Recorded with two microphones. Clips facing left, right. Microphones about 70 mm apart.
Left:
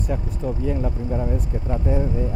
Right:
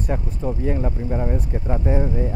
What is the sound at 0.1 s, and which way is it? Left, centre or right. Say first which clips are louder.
Speech: right 1 dB; right.